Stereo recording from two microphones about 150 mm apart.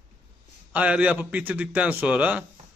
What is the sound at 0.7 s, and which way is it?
A man's voice, 10° right (ahead or behind).